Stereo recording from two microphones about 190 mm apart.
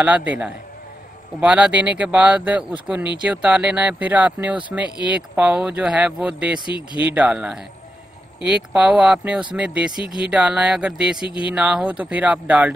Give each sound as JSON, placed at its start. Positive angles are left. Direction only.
{"t": 0.0, "sound": "speech", "side_deg": -10}
{"t": 6.6, "sound": "speech", "side_deg": 25}
{"t": 7.0, "sound": "speech", "side_deg": -5}